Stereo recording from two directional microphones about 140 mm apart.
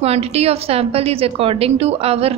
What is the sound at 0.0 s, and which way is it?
Speech, 45° right (ahead or behind).